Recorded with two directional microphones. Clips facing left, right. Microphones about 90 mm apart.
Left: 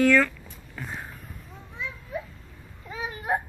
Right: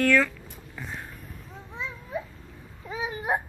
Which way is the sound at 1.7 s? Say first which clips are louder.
Right 1 dB; 25° right (ahead or behind).